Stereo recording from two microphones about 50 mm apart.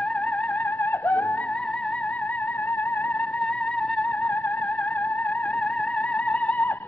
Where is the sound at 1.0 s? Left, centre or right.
Left.